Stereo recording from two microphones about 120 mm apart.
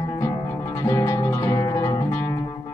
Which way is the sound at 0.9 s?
25° left (ahead or behind).